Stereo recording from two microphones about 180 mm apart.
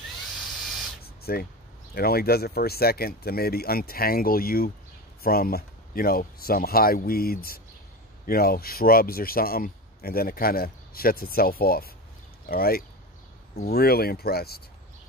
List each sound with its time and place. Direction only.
1.0 s spray: 60° left (ahead or behind)
2.0 s speech: 60° left (ahead or behind)